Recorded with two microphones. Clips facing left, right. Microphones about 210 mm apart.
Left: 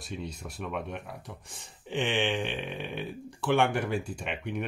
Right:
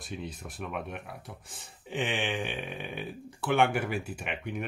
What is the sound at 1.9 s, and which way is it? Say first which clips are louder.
Speech: left 3 dB; centre (ahead or behind).